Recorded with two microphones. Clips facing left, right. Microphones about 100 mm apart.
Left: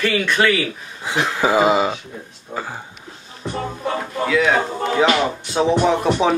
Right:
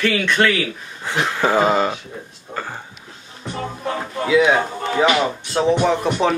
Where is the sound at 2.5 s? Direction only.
10° left (ahead or behind).